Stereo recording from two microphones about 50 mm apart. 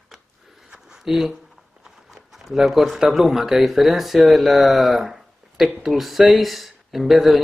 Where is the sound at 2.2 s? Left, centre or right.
Centre.